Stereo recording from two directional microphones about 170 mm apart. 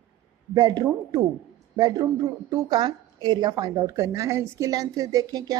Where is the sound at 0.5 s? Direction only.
25° right (ahead or behind).